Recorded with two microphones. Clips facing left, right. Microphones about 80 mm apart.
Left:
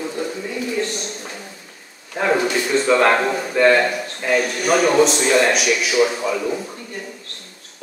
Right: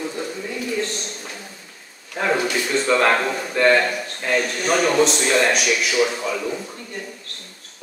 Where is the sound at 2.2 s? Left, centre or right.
Centre.